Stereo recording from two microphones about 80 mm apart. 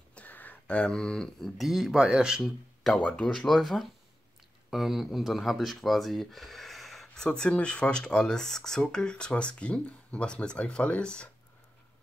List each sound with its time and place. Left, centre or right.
0.1 s a sound: left
1.6 s speech: centre
2.4 s speech: centre
3.0 s speech: centre